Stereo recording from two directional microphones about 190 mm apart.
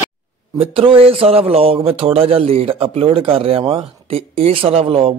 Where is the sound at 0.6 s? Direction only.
30° right (ahead or behind).